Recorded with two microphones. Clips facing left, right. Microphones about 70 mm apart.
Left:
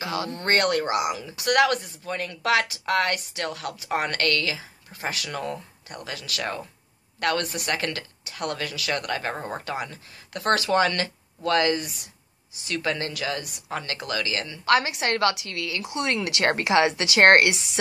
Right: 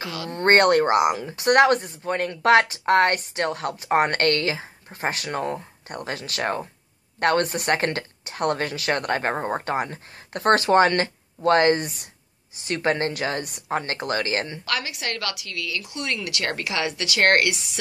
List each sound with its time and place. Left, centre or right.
0.0 s speech: left
0.3 s speech: right
14.7 s a woman's voice: left